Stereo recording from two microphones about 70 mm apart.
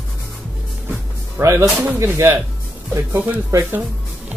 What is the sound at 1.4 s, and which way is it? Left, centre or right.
Speech, right.